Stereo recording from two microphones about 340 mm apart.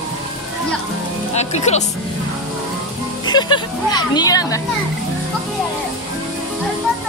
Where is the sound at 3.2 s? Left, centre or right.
Centre.